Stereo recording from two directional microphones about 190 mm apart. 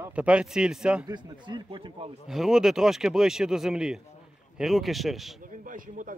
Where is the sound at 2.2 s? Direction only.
Centre (ahead or behind).